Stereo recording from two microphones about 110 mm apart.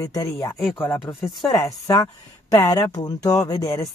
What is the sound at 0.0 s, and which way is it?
Speech, 35° left (ahead or behind).